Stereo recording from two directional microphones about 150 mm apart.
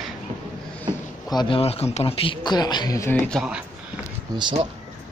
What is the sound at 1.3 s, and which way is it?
Speech, 30° left (ahead or behind).